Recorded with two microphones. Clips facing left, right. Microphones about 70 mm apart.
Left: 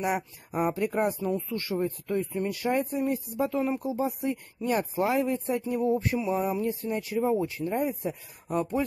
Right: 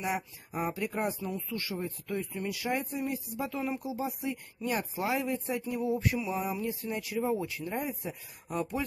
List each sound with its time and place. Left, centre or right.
0.7 s speech: left
1.2 s speech: left
3.5 s speech: left
3.8 s speech: left